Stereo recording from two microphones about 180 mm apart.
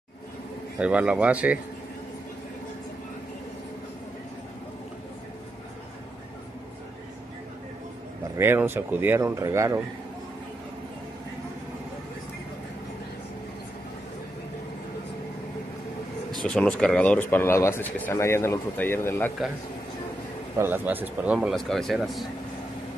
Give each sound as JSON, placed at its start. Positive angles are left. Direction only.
{"t": 0.7, "sound": "speech", "side_deg": -5}
{"t": 8.4, "sound": "speech", "side_deg": -10}
{"t": 16.4, "sound": "speech", "side_deg": 5}
{"t": 20.5, "sound": "speech", "side_deg": -10}